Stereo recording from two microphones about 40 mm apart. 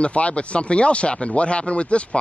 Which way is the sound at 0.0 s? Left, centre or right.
Left.